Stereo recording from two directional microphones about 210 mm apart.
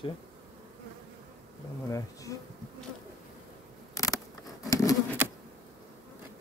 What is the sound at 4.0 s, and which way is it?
Patter, 15° left (ahead or behind).